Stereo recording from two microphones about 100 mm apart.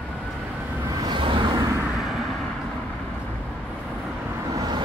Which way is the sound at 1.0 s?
55° right (ahead or behind).